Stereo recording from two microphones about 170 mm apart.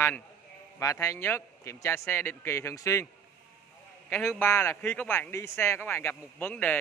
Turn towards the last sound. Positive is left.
turn(degrees=10)  # may be behind; listen again after turning